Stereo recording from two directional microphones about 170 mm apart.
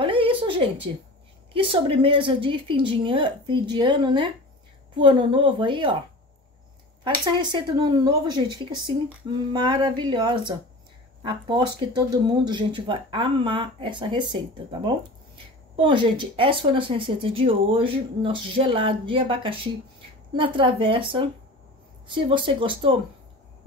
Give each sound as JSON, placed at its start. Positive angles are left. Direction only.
{"t": 0.0, "sound": "a sound", "side_deg": -30}
{"t": 1.5, "sound": "speech", "side_deg": -30}
{"t": 7.3, "sound": "speech", "side_deg": -30}